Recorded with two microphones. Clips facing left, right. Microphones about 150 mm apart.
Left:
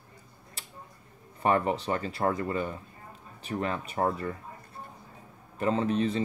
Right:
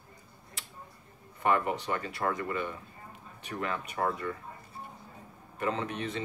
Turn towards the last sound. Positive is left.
turn(degrees=30)  # may be behind; listen again after turning